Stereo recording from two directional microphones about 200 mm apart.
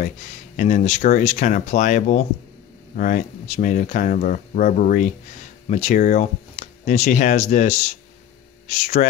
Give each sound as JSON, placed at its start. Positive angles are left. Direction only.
{"t": 0.6, "sound": "speech", "side_deg": 35}